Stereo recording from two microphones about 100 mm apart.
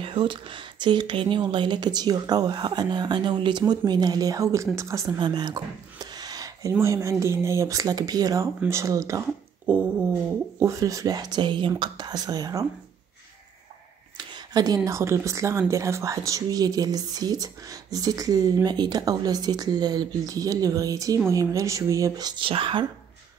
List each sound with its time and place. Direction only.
0.0 s speech: 60° right (ahead or behind); by 5.1 s 30° right (ahead or behind)
5.2 s a sound: 45° right (ahead or behind)
6.7 s speech: 30° right (ahead or behind)
9.7 s dog: 20° right (ahead or behind)
10.6 s speech: 35° right (ahead or behind)
14.1 s a sound: 45° right (ahead or behind)
14.9 s speech: 30° right (ahead or behind)
22.4 s speech: 65° right (ahead or behind)